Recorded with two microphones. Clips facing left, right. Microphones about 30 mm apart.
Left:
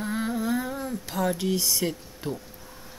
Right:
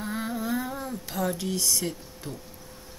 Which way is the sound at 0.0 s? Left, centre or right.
Centre.